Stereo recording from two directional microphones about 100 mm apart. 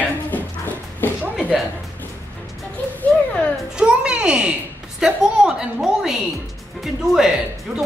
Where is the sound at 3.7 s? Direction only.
10° right (ahead or behind).